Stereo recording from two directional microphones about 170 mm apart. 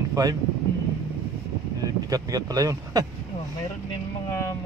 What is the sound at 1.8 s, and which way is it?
Speech, 20° right (ahead or behind).